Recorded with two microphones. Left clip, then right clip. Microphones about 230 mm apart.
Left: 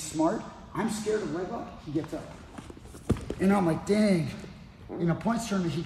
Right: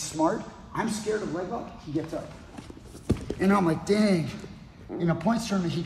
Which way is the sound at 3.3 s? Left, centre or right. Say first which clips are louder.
Right 2 dB; centre.